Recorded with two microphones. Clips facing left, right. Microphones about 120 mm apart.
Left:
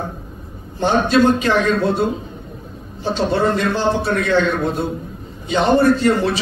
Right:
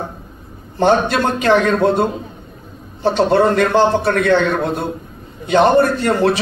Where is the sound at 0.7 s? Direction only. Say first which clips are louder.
Right 1 dB; 60° right (ahead or behind).